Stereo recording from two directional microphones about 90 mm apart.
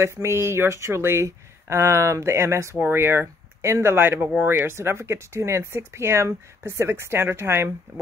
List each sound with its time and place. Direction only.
0.0 s speech: 30° right (ahead or behind)